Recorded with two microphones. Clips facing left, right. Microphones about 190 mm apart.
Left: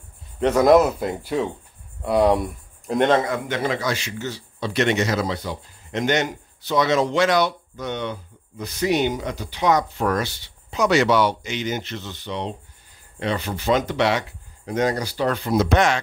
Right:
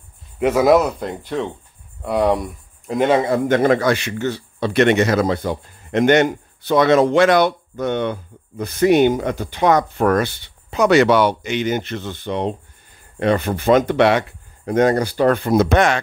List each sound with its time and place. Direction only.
0.4 s speech: 5° right (ahead or behind)
3.3 s a man's voice: 45° right (ahead or behind)